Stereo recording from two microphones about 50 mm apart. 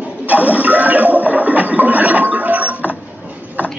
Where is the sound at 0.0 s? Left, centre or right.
Right.